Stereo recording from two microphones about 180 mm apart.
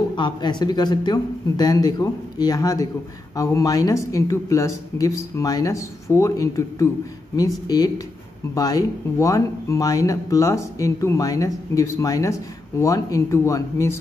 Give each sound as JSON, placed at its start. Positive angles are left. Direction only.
{"t": 0.1, "sound": "speech", "side_deg": 25}